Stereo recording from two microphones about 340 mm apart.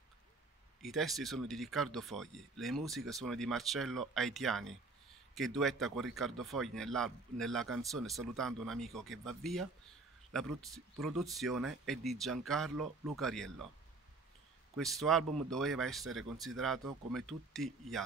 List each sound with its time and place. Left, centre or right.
0.8 s speech: centre
14.8 s speech: centre